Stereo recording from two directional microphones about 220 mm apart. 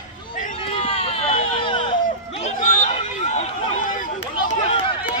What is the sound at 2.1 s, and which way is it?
Run, 30° left (ahead or behind).